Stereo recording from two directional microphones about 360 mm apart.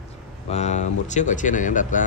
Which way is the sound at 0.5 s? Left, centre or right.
Centre.